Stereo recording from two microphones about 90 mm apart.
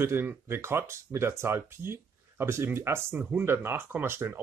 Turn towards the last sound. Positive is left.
turn(degrees=-25)  # may be behind; listen again after turning